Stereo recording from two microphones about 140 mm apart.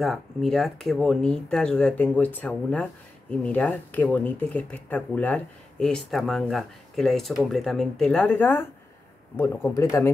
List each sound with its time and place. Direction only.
0.0 s speech: centre (ahead or behind); by 10.1 s 20° left (ahead or behind)